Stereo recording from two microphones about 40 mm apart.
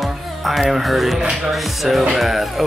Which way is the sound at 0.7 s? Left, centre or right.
Centre.